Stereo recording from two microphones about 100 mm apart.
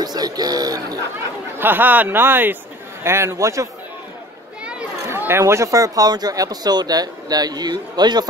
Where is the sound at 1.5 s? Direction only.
20° right (ahead or behind).